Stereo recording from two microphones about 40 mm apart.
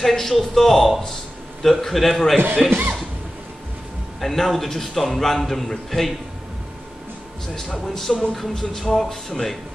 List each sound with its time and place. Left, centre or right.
0.0 s a man's voice: centre
2.6 s speech: right
4.2 s a man's voice: centre
7.7 s speech: centre